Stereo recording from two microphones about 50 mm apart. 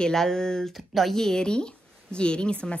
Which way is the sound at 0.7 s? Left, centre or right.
Centre.